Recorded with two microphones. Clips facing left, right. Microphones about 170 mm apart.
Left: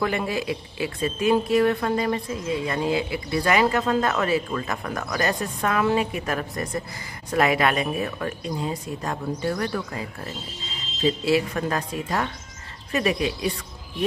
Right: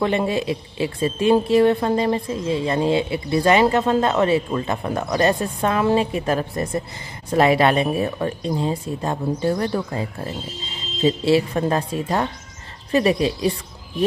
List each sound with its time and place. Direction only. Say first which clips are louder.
0.0 s a woman's voice: right 5 dB; 25° right (ahead or behind)